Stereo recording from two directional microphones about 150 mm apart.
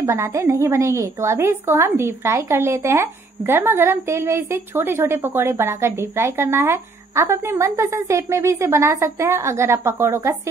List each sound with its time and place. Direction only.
0.0 s a woman's voice: 20° right (ahead or behind)